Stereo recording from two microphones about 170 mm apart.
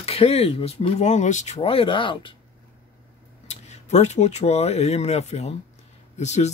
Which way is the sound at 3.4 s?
40° left (ahead or behind).